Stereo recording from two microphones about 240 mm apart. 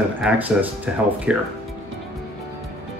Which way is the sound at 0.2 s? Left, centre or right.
Centre.